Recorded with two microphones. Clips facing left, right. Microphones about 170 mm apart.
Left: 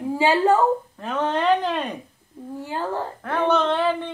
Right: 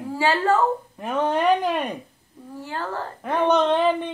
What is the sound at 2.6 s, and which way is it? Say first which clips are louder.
Speech: left 3 dB; 15° left (ahead or behind).